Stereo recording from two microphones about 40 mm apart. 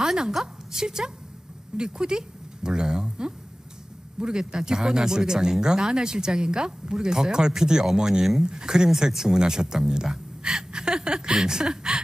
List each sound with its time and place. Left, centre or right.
0.0 s a sound: centre
0.8 s speech: centre
10.4 s gasp: centre